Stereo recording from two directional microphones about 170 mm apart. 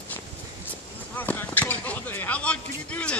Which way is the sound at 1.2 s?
10° left (ahead or behind).